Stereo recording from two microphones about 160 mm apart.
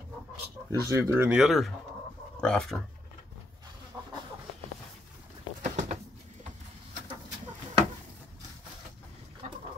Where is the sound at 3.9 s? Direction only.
20° right (ahead or behind).